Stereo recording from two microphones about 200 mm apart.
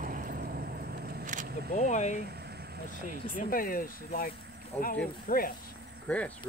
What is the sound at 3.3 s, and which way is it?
Speech, 45° left (ahead or behind).